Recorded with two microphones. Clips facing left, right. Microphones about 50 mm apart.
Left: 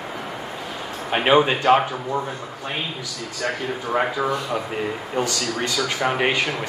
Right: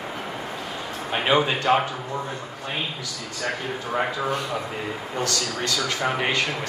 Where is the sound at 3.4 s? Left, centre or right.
Centre.